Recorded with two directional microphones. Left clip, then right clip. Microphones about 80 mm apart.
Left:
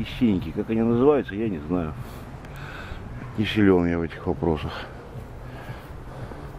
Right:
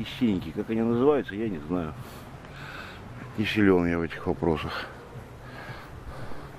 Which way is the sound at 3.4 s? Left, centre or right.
Centre.